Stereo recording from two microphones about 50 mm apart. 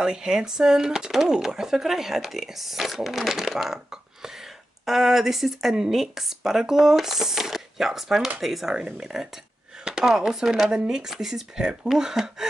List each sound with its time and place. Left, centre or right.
0.0 s speech: centre
8.7 s speech: centre